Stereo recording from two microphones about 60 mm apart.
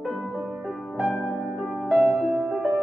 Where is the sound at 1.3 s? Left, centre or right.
Right.